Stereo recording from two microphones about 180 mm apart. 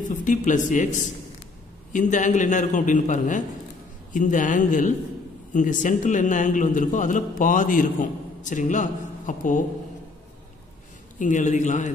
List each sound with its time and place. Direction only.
0.0 s a man's voice: 45° left (ahead or behind)
11.1 s a man's voice: 45° left (ahead or behind)